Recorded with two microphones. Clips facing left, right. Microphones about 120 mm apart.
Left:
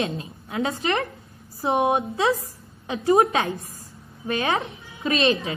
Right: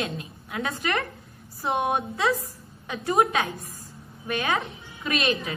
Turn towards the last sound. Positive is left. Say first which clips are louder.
# left 5 dB
turn(degrees=30)  # may be behind; listen again after turning